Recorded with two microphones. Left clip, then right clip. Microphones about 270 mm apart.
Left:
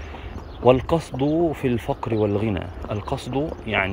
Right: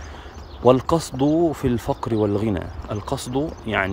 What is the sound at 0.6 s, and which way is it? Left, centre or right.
Speech, right.